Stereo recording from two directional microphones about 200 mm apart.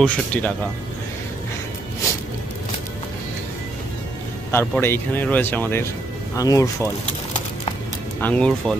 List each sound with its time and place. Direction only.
0.0 s speech: 5° left (ahead or behind)
4.5 s speech: 10° left (ahead or behind)
8.2 s speech: 5° left (ahead or behind)